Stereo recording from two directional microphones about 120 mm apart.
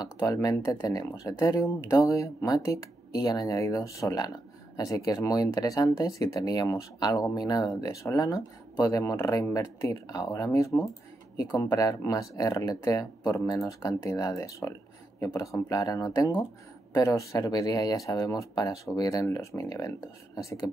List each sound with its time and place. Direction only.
0.2 s speech: 30° left (ahead or behind)